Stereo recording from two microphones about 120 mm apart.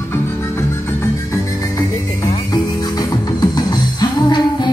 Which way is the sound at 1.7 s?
30° left (ahead or behind).